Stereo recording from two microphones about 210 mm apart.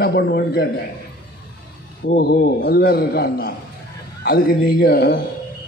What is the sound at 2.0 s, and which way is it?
A man's voice, 50° left (ahead or behind).